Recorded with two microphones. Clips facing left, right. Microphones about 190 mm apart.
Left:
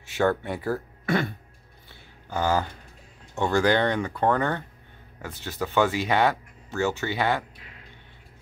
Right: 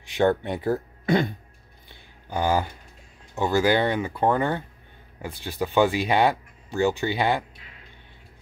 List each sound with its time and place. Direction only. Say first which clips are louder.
0.1 s speech: right 2 dB; 20° right (ahead or behind)
1.9 s a sound: right 1 dB; 15° right (ahead or behind)
3.3 s speech: right 1 dB; 5° right (ahead or behind)